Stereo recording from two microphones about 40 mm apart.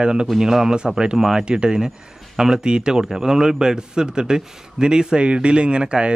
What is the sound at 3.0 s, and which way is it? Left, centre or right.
A man's voice, centre.